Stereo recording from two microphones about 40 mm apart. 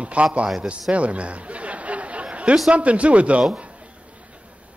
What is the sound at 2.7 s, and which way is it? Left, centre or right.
Speech, right.